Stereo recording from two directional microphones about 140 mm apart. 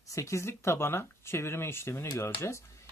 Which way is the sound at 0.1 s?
20° left (ahead or behind).